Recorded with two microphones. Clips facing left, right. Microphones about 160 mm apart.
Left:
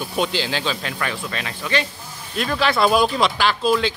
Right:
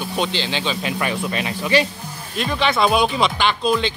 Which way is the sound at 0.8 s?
15° right (ahead or behind).